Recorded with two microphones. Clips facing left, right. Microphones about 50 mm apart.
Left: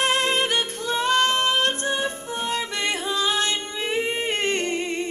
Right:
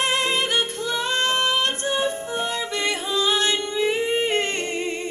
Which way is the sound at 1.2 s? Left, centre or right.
Right.